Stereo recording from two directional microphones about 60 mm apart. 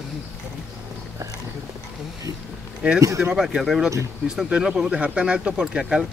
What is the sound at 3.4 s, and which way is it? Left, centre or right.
Speech, centre.